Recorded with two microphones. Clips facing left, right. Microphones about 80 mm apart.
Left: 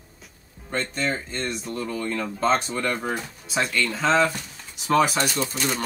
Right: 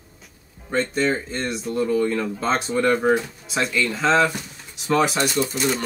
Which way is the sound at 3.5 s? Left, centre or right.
Centre.